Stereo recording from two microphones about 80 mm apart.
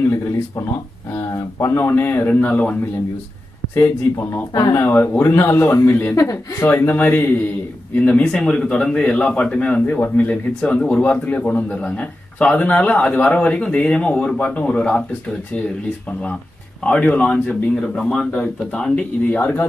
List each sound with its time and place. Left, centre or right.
1.3 s speech: left
3.7 s speech: left
4.7 s speech: left
6.1 s speech: left
6.6 s a man's voice: left
16.8 s a man's voice: centre